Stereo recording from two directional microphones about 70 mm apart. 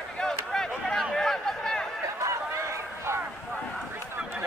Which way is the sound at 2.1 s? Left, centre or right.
Right.